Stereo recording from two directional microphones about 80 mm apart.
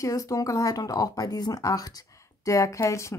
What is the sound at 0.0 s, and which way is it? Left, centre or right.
Speech, left.